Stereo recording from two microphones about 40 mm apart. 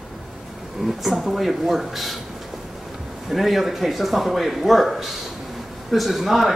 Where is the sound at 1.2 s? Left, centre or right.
Centre.